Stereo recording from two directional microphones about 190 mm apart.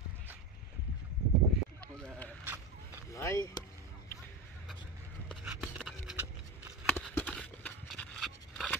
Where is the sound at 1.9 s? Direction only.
5° left (ahead or behind).